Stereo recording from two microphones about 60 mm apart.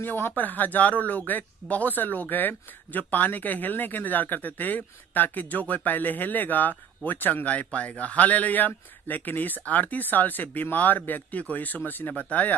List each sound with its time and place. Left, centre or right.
0.0 s speech: left